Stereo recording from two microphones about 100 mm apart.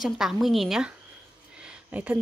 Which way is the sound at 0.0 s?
Centre (ahead or behind).